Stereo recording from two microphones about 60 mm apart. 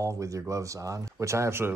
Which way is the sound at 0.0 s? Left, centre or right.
Right.